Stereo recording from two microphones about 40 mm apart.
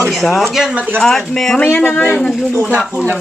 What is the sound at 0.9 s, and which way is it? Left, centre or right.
Speech, centre.